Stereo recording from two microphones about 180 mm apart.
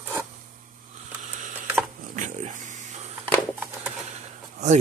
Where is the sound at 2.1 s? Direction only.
45° right (ahead or behind).